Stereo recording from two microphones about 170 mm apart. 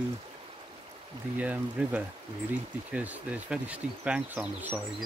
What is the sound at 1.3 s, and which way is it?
Speech, 10° right (ahead or behind).